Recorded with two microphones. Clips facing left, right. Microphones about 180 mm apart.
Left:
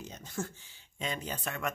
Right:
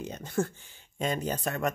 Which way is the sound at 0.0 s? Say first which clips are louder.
Right 8 dB; 60° right (ahead or behind).